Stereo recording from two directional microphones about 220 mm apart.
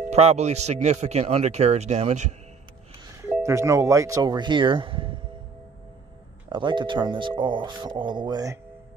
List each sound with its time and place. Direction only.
0.1 s speech: 30° right (ahead or behind)
3.4 s speech: 15° right (ahead or behind)
6.5 s speech: 20° right (ahead or behind)